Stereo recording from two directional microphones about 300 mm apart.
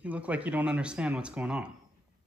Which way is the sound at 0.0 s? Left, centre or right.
Centre.